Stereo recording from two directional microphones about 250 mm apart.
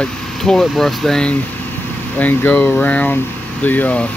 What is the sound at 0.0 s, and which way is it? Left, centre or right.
Speech, centre.